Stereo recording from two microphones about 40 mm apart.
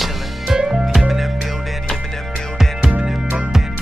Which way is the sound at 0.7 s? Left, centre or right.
Centre.